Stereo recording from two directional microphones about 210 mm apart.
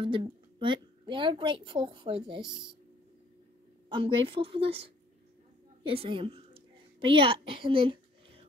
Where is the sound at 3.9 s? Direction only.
25° right (ahead or behind).